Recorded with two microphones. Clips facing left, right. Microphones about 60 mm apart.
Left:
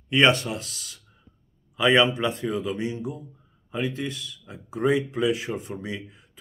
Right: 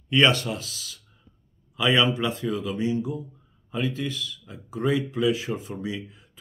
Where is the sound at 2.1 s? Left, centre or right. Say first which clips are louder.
Left 1 dB; centre.